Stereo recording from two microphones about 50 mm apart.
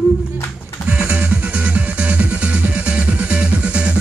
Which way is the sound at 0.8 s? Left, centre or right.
Right.